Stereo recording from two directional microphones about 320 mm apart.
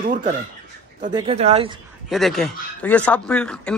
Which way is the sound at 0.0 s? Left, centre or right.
Right.